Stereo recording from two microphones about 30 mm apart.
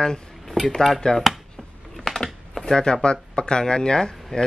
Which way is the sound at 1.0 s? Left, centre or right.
Left.